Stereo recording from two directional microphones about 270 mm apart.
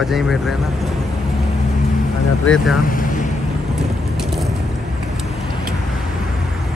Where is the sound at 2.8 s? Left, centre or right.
Left.